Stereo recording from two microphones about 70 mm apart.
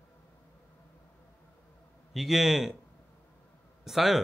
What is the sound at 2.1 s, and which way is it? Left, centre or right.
Speech, centre.